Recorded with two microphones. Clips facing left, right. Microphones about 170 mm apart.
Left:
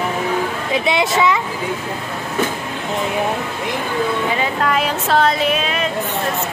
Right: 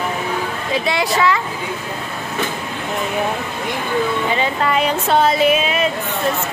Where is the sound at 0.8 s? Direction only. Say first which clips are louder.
Left 1 dB; 20° left (ahead or behind).